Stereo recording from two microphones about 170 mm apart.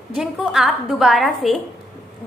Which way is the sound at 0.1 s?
5° right (ahead or behind).